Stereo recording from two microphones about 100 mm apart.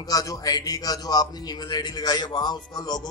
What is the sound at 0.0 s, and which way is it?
A man's voice, 35° left (ahead or behind).